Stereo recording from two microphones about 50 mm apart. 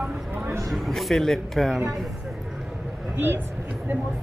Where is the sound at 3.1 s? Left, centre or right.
Right.